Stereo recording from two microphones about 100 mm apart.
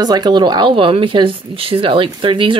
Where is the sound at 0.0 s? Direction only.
40° right (ahead or behind).